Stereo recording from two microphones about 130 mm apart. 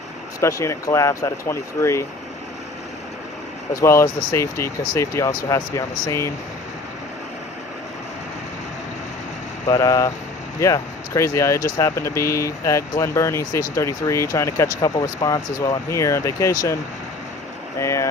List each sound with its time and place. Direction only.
0.4 s speech: 25° left (ahead or behind)
3.7 s speech: 25° left (ahead or behind)
9.7 s speech: 25° left (ahead or behind)
17.7 s speech: 25° left (ahead or behind)